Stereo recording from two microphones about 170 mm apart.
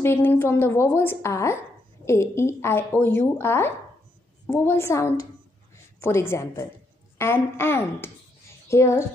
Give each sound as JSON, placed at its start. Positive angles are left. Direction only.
{"t": 0.0, "sound": "a woman's voice", "side_deg": 10}